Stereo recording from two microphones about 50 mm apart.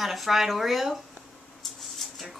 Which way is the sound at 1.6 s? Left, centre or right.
Centre.